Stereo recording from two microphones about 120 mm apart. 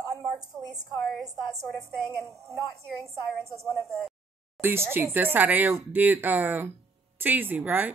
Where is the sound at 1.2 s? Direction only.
Centre (ahead or behind).